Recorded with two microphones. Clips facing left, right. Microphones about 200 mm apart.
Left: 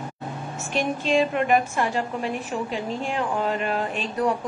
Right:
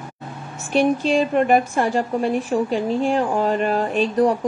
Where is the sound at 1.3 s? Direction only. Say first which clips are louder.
Right 4 dB; 40° right (ahead or behind).